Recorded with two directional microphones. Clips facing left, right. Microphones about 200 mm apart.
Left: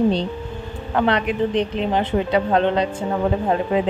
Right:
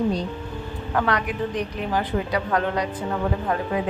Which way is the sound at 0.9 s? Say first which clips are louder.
Left 5 dB; 25° left (ahead or behind).